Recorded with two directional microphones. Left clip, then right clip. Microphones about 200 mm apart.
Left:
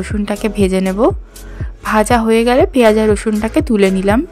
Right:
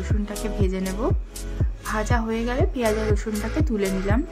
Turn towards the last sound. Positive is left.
turn(degrees=45)  # may be behind; listen again after turning